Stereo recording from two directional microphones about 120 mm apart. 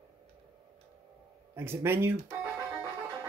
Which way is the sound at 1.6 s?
20° right (ahead or behind).